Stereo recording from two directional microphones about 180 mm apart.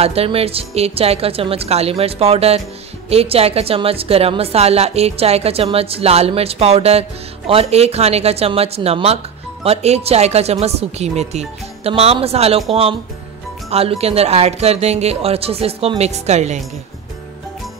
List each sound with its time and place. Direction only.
0.0 s a woman's voice: 35° right (ahead or behind)
13.7 s a woman's voice: 35° right (ahead or behind)